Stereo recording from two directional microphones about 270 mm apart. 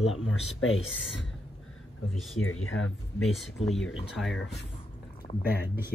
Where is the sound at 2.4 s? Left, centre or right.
Left.